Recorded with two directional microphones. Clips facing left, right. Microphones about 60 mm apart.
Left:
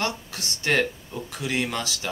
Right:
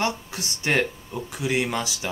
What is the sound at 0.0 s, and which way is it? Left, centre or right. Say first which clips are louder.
Speech: right 2 dB; centre.